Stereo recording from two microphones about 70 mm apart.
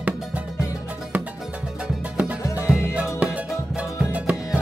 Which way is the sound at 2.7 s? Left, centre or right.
Centre.